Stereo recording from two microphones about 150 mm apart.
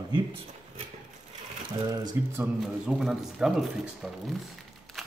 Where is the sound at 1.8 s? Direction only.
25° right (ahead or behind).